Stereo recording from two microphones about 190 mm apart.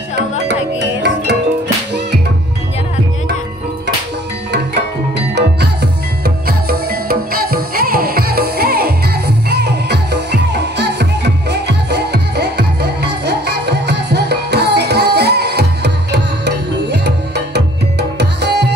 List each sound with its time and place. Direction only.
0.5 s music: 65° right (ahead or behind)
5.3 s music: 60° right (ahead or behind)
18.2 s tabla: 60° right (ahead or behind)